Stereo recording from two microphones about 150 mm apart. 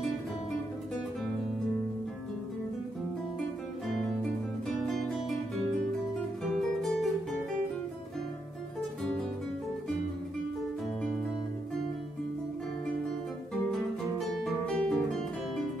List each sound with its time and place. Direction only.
4.2 s music: centre (ahead or behind)
13.7 s guitar: centre (ahead or behind)